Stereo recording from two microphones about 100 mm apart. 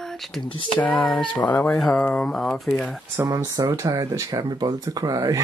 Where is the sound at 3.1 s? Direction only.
30° right (ahead or behind).